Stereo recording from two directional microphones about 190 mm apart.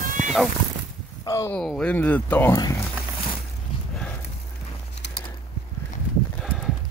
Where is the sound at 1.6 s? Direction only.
5° left (ahead or behind).